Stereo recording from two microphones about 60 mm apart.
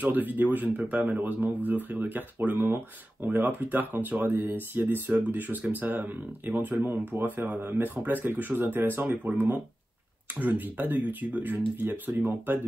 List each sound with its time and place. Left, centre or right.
0.0 s speech: right